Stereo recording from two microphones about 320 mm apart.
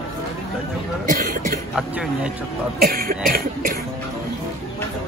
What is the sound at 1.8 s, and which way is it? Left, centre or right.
Speech, centre.